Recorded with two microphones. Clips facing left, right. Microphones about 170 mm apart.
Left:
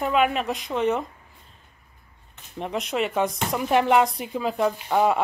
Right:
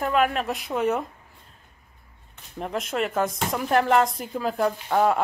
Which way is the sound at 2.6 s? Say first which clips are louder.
Left 1 dB; centre (ahead or behind).